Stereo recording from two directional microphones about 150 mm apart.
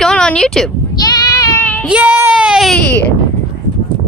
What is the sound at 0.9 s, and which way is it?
Child singing, 25° left (ahead or behind).